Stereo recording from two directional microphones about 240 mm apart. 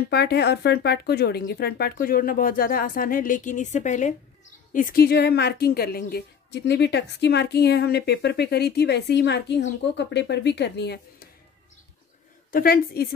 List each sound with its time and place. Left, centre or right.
0.1 s a woman's voice: left
12.4 s speech: left